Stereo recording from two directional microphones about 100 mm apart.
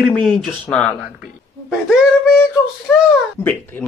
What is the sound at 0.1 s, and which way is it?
Speech, centre (ahead or behind).